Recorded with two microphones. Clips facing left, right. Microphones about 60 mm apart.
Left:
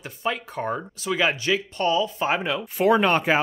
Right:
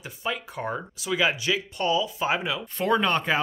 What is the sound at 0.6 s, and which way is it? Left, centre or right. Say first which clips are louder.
Speech: left 3 dB; left.